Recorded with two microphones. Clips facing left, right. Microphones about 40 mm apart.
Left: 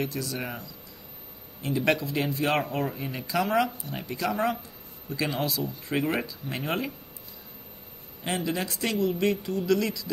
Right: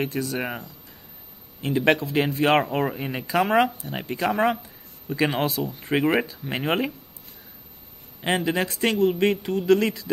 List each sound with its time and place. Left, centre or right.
0.0 s speech: right
8.5 s speech: right